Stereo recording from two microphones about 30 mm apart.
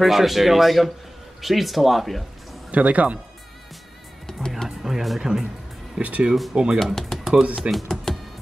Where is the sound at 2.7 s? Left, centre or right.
Right.